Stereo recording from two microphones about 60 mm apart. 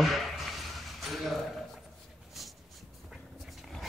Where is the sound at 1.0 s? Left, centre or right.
Centre.